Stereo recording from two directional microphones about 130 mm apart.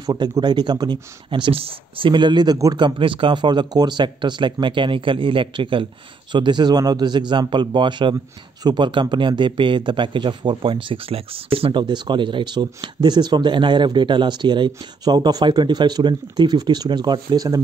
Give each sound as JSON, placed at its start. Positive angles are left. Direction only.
{"t": 0.0, "sound": "speech", "side_deg": -30}